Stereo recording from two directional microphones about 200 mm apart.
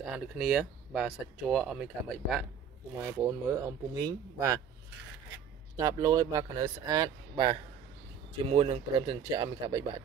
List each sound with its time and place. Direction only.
0.0 s speech: 5° right (ahead or behind)
3.0 s speech: 15° right (ahead or behind)
5.8 s speech: 20° right (ahead or behind)